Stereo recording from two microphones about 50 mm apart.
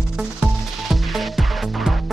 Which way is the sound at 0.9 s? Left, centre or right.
Centre.